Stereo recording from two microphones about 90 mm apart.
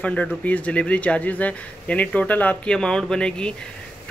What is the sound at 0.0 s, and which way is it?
Speech, 15° left (ahead or behind).